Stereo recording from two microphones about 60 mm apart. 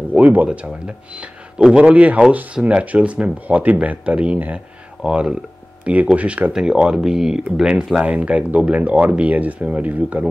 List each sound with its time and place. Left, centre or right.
0.1 s speech: right
8.0 s speech: right